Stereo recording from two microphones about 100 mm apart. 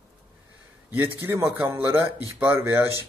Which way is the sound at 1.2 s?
25° right (ahead or behind).